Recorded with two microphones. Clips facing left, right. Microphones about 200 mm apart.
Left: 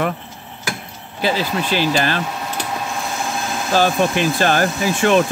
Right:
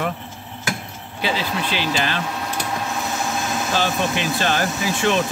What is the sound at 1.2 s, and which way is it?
Speech, 45° left (ahead or behind).